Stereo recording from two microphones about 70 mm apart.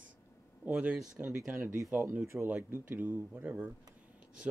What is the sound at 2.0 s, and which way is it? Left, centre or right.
Speech, right.